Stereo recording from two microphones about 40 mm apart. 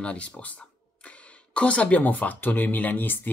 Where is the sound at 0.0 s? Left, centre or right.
Left.